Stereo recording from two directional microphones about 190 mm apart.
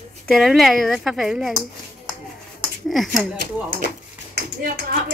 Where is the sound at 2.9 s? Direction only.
Centre (ahead or behind).